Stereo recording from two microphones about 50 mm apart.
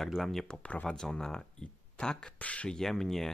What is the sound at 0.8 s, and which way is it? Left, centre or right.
Speech, centre.